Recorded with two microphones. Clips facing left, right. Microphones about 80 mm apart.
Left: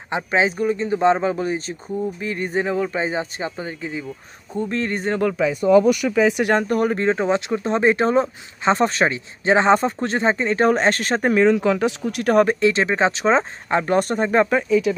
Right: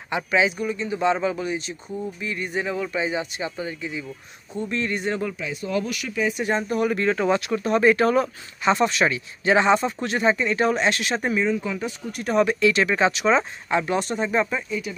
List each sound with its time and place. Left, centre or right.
0.1 s speech: left
6.3 s speech: left
6.9 s speech: left
11.3 s speech: left
12.4 s speech: left
14.9 s speech: left